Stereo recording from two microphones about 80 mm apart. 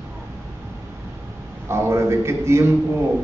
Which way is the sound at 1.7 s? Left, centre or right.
Right.